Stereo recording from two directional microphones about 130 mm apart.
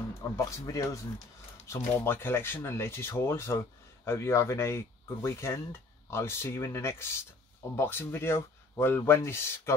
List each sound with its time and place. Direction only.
0.5 s speech: 25° left (ahead or behind)